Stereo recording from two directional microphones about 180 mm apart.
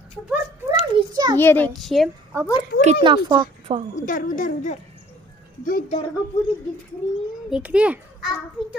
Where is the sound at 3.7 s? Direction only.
35° right (ahead or behind).